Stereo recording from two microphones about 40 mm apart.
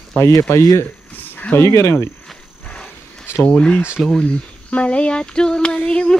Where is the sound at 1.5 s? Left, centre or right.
Left.